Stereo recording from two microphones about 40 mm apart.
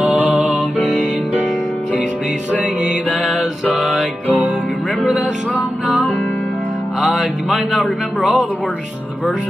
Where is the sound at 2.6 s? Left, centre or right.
Right.